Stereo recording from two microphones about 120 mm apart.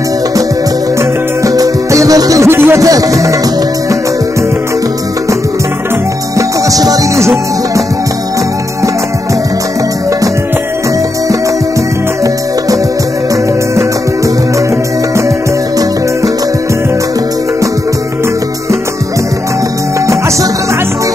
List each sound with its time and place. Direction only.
1.4 s music: 30° right (ahead or behind)